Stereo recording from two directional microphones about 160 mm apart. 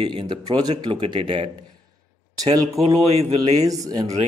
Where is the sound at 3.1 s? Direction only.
40° right (ahead or behind).